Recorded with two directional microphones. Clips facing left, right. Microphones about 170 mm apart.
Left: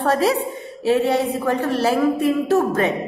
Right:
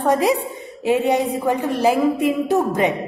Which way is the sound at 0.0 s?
15° right (ahead or behind).